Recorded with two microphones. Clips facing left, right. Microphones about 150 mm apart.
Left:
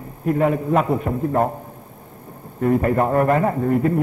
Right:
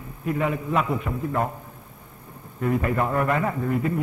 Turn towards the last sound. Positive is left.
turn(degrees=45)  # may be behind; listen again after turning